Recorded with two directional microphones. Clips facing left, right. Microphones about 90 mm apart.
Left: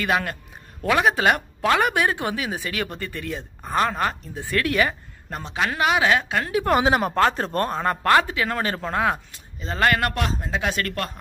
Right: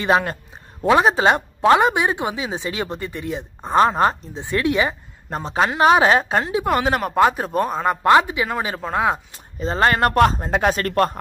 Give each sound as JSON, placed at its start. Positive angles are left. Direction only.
{"t": 0.0, "sound": "speech", "side_deg": -25}
{"t": 5.3, "sound": "a man's voice", "side_deg": -35}
{"t": 6.4, "sound": "speech", "side_deg": -20}
{"t": 6.7, "sound": "speech", "side_deg": 0}
{"t": 7.2, "sound": "speech", "side_deg": -10}
{"t": 8.9, "sound": "speech", "side_deg": -20}
{"t": 9.3, "sound": "a man's voice", "side_deg": -35}